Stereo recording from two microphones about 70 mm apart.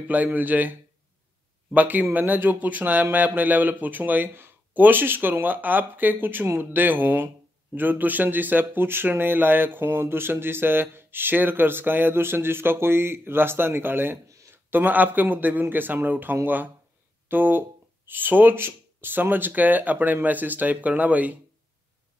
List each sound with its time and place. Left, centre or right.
0.1 s speech: right